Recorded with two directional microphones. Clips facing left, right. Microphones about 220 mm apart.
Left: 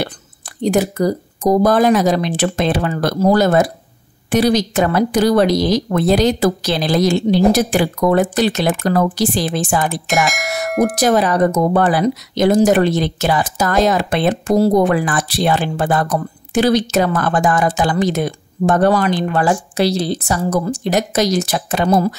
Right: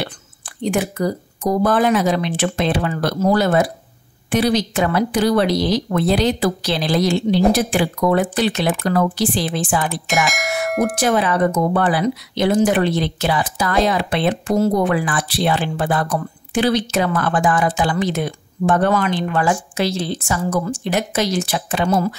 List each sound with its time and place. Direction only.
0.6 s speech: 40° left (ahead or behind)
10.2 s speech: centre (ahead or behind)
11.0 s speech: 40° left (ahead or behind)